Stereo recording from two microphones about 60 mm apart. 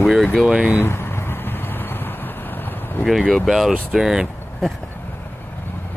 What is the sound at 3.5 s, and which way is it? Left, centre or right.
Speech, centre.